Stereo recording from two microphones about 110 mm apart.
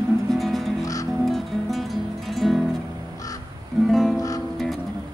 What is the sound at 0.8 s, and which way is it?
Music, 30° left (ahead or behind).